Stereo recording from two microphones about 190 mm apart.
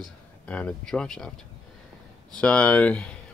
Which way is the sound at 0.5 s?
5° left (ahead or behind).